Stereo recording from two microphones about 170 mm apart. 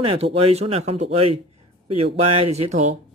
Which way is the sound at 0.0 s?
35° right (ahead or behind).